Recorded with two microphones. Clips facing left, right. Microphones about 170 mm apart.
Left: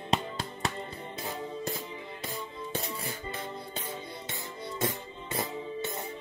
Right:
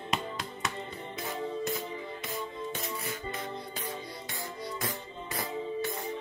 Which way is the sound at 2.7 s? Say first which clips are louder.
Left 1 dB; 30° left (ahead or behind).